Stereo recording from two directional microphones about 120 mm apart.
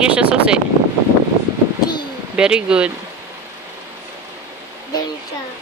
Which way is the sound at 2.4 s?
5° right (ahead or behind).